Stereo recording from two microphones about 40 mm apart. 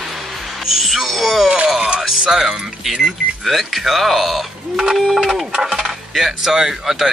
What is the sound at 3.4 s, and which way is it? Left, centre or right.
Speech, centre.